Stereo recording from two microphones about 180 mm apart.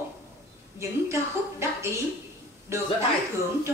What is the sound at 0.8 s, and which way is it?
A woman's voice, 15° right (ahead or behind).